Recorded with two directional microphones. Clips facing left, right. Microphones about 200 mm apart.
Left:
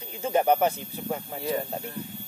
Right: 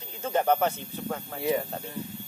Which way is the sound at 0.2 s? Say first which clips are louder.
Left 2 dB; 15° left (ahead or behind).